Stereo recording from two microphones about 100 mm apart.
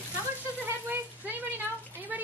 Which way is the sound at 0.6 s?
20° right (ahead or behind).